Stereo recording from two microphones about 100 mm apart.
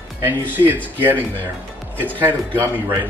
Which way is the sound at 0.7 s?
20° right (ahead or behind).